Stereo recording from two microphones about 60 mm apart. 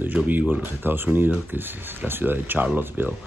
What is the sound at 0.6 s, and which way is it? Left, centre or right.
Speech, right.